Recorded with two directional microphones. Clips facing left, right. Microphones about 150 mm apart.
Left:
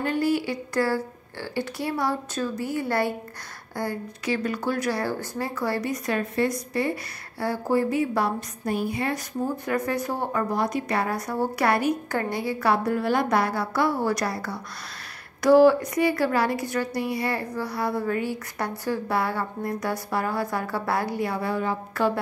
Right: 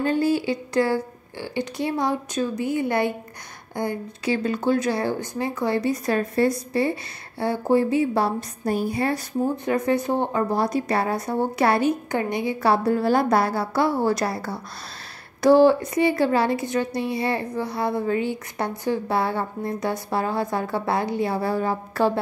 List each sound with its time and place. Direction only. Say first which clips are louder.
0.0 s a woman's voice: right 3 dB; 30° right (ahead or behind)
9.7 s a woman's voice: right 5 dB; 25° right (ahead or behind)